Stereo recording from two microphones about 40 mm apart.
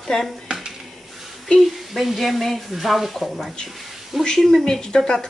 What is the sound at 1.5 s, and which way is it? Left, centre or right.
Speech, centre.